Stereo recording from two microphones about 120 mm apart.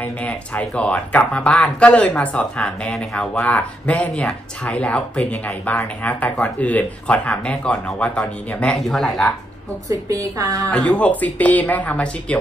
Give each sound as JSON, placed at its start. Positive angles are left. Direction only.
{"t": 0.0, "sound": "speech", "side_deg": 10}
{"t": 9.8, "sound": "speech", "side_deg": -25}
{"t": 10.7, "sound": "speech", "side_deg": 10}